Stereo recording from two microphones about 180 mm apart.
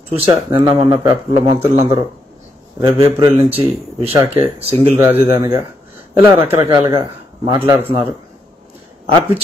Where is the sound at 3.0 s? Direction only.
35° right (ahead or behind).